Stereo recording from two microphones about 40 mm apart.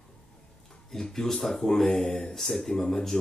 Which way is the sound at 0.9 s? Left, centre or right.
Centre.